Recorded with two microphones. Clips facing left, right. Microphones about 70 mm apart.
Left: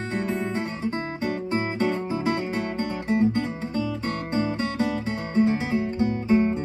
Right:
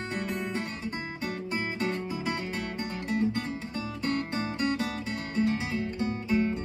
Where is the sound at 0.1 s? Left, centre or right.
Left.